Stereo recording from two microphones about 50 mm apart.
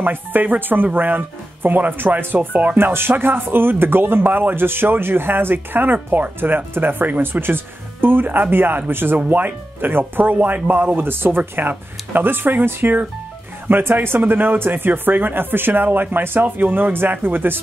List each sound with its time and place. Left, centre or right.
0.0 s speech: right
2.8 s speech: right